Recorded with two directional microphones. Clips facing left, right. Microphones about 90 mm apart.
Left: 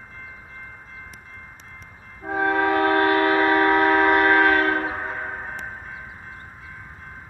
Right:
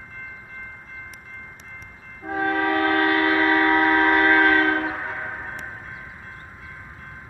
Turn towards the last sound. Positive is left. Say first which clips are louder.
# left 1 dB
turn(degrees=20)  # may be behind; listen again after turning